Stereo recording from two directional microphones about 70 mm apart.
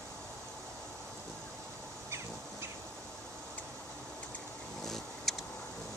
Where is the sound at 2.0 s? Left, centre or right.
Right.